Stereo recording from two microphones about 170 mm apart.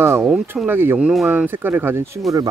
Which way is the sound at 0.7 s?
10° right (ahead or behind).